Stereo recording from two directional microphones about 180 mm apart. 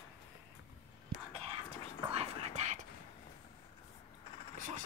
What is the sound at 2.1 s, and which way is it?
Whispering, 35° right (ahead or behind).